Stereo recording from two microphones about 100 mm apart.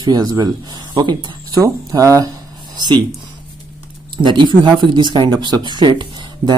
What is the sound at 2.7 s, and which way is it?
Speech, 45° right (ahead or behind).